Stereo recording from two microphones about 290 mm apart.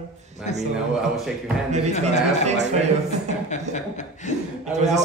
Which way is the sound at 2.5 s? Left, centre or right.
Right.